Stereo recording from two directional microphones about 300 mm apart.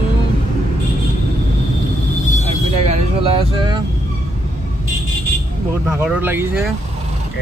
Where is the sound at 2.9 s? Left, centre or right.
Centre.